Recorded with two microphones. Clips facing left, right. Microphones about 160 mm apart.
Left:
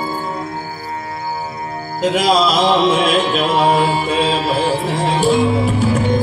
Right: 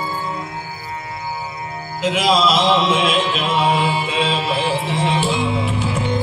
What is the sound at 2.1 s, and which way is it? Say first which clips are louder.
Mantra: left 1 dB; 40° left (ahead or behind).